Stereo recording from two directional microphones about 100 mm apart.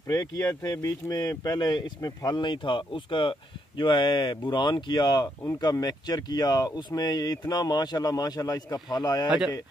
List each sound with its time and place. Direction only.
0.1 s speech: 35° left (ahead or behind)